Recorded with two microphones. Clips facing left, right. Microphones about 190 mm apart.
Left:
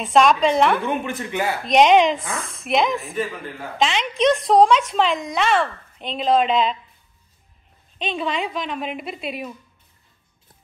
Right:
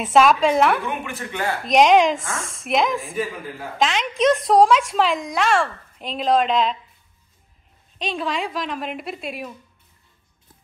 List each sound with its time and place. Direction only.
0.0 s speech: 5° right (ahead or behind)
0.8 s speech: 25° left (ahead or behind)
1.7 s speech: centre (ahead or behind)
8.0 s speech: centre (ahead or behind)